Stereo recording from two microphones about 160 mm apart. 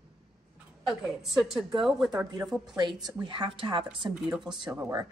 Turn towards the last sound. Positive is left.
turn(degrees=-25)  # may be behind; listen again after turning